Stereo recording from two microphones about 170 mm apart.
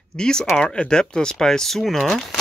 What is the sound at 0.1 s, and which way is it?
Speech, 5° left (ahead or behind).